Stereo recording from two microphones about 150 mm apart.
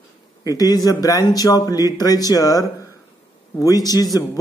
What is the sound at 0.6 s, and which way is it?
A man's voice, 25° left (ahead or behind).